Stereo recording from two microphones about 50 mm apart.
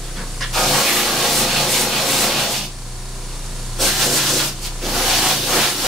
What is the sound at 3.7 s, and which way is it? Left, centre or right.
Rub, centre.